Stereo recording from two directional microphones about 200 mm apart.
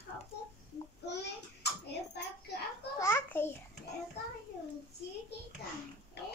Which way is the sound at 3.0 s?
10° left (ahead or behind).